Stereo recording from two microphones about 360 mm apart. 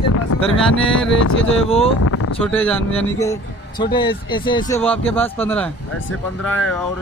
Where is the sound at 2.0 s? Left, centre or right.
Left.